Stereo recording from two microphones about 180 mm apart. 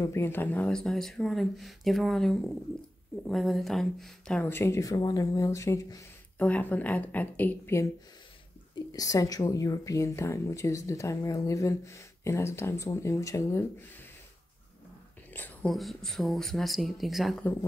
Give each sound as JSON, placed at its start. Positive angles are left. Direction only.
{"t": 0.0, "sound": "speech", "side_deg": 15}
{"t": 15.3, "sound": "speech", "side_deg": 5}